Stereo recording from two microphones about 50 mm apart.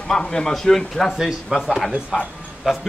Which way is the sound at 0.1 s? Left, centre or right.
Centre.